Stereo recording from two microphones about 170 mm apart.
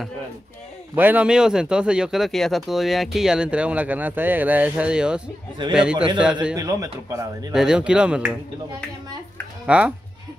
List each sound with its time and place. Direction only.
0.9 s speech: 10° right (ahead or behind)
6.5 s speech: 20° right (ahead or behind)
7.5 s speech: 5° right (ahead or behind)
9.7 s speech: 5° right (ahead or behind)